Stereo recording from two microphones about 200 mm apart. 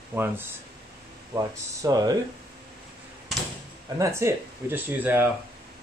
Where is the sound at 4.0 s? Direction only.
15° right (ahead or behind).